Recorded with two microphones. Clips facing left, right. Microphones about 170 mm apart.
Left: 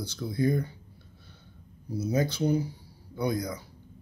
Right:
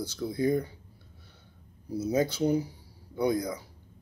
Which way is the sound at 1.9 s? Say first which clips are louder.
Right 1 dB; 20° right (ahead or behind).